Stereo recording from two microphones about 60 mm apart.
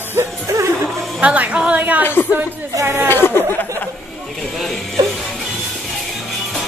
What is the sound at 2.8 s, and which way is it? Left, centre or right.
Speech, right.